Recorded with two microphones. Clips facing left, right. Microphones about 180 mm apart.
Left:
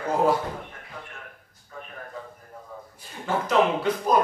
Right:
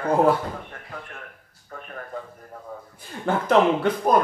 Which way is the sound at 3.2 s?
55° right (ahead or behind).